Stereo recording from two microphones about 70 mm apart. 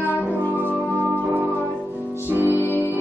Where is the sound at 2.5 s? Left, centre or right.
Right.